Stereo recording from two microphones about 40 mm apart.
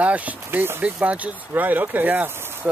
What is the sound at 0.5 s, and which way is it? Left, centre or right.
Speech, right.